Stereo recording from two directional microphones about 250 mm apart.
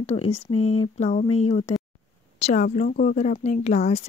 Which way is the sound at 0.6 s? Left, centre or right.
Left.